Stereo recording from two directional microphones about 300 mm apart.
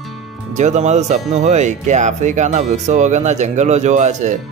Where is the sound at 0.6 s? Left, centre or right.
Right.